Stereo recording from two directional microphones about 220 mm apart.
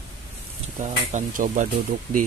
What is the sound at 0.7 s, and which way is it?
Speech, 35° right (ahead or behind).